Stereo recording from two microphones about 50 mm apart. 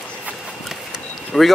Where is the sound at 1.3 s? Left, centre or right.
Centre.